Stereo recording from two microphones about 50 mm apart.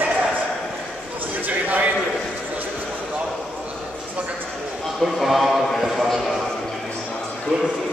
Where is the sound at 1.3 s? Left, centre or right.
Right.